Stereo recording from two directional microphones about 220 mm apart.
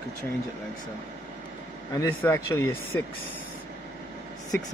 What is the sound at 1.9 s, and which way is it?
Speech, 15° left (ahead or behind).